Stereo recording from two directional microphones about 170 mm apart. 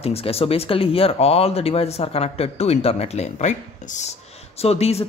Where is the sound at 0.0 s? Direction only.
35° left (ahead or behind).